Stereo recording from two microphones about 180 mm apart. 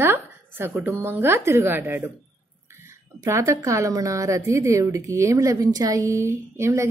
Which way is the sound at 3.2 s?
15° right (ahead or behind).